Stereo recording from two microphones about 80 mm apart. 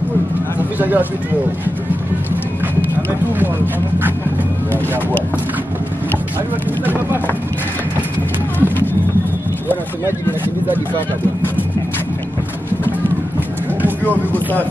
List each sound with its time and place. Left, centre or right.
0.7 s speech: right
14.3 s speech: left